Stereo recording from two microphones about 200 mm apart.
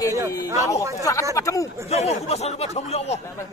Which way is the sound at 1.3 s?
15° left (ahead or behind).